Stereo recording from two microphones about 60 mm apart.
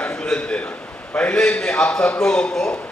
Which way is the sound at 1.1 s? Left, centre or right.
Centre.